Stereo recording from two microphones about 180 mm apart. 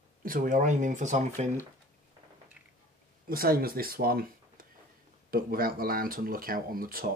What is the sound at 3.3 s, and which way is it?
Speech, 55° right (ahead or behind).